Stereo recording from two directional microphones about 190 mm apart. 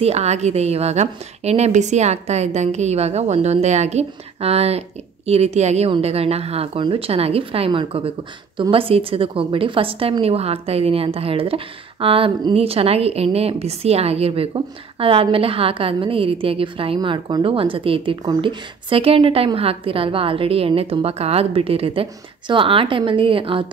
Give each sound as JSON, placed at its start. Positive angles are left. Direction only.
{"t": 0.0, "sound": "a woman's voice", "side_deg": -35}